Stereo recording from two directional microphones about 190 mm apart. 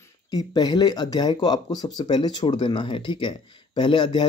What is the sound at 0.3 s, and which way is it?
Speech, 20° left (ahead or behind).